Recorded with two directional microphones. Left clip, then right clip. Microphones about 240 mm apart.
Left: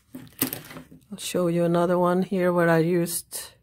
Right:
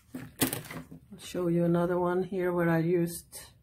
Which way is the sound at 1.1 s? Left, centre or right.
Left.